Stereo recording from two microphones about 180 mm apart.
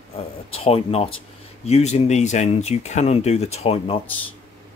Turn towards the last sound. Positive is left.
turn(degrees=35)  # may be behind; listen again after turning